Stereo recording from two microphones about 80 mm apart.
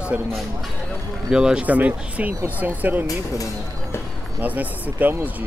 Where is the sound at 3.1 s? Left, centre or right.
Left.